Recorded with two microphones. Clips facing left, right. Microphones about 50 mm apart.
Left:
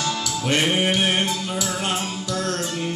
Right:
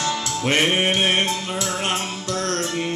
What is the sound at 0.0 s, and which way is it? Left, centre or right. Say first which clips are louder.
Music: right 2 dB; right.